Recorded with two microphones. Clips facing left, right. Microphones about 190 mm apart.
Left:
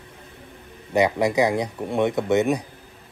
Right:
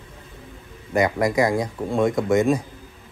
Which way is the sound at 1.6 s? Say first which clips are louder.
Right 1 dB; 10° left (ahead or behind).